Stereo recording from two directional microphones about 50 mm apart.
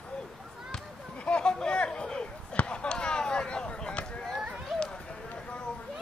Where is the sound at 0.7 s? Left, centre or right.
Left.